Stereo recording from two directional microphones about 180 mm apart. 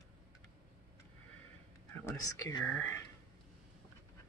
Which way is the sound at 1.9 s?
15° left (ahead or behind).